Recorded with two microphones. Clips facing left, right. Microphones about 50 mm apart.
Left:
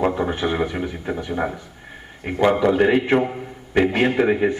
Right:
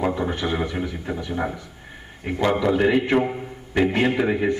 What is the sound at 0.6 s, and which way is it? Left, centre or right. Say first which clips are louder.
A man's voice: left 2 dB; centre.